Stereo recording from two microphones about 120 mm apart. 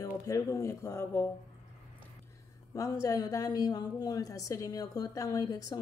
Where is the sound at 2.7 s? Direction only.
30° left (ahead or behind).